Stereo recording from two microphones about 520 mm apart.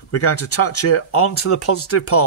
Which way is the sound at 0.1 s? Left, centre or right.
Left.